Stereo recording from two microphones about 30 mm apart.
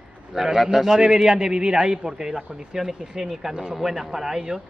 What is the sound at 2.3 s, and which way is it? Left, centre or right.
Speech, right.